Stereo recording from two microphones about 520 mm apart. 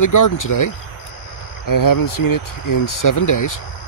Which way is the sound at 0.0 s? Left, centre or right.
Left.